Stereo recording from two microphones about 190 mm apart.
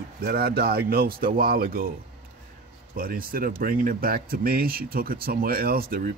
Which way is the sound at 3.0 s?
50° right (ahead or behind).